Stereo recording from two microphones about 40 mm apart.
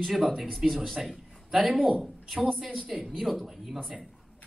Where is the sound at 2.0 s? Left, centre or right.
Centre.